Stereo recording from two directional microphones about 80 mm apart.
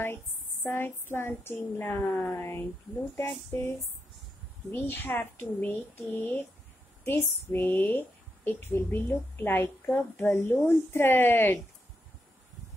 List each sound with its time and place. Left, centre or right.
0.7 s a woman's voice: left